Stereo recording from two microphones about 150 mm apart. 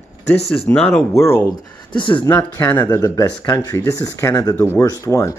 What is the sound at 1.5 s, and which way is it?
Speech, 30° left (ahead or behind).